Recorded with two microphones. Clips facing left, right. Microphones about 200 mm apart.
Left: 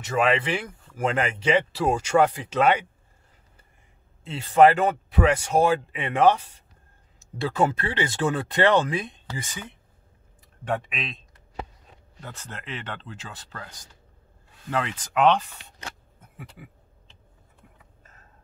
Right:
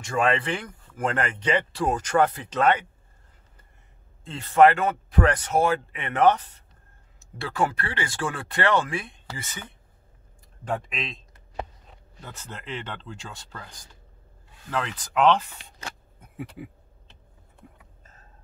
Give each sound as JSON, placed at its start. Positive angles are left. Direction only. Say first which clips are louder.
{"t": 0.0, "sound": "speech", "louder": "left 1 dB", "side_deg": 5}
{"t": 4.3, "sound": "speech", "louder": "left 1 dB", "side_deg": 15}
{"t": 10.7, "sound": "speech", "louder": "left 1 dB", "side_deg": 0}
{"t": 12.4, "sound": "speech", "louder": "right 3 dB", "side_deg": 0}
{"t": 14.7, "sound": "speech", "louder": "left 2 dB", "side_deg": 5}